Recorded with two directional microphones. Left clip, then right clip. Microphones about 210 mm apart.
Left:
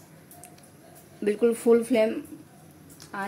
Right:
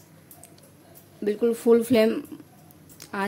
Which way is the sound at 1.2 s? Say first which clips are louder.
Even; 10° right (ahead or behind).